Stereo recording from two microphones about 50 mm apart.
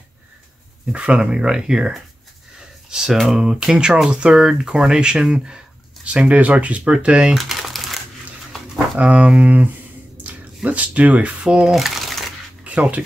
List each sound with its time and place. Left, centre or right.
0.9 s speech: right
6.0 s speech: right
7.3 s crumpling: centre
8.9 s speech: right
11.4 s speech: centre
12.6 s speech: right